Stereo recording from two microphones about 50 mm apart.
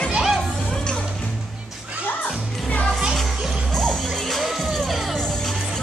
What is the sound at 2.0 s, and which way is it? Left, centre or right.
Music, left.